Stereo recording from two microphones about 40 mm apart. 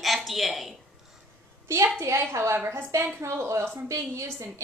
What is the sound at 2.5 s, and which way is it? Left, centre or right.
Speech, right.